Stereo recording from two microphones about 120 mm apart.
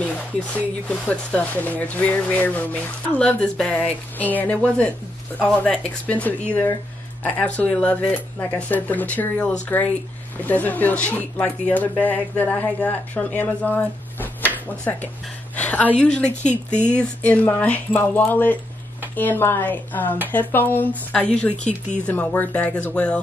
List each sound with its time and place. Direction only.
0.6 s speech: 10° left (ahead or behind)